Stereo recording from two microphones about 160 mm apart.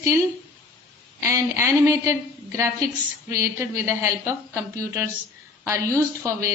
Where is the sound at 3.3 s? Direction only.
20° right (ahead or behind).